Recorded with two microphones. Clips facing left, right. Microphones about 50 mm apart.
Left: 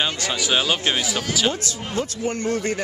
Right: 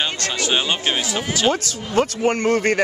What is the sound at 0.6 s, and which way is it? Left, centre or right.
Speech, centre.